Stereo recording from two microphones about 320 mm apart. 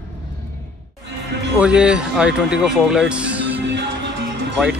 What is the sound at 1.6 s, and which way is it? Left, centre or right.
Speech, centre.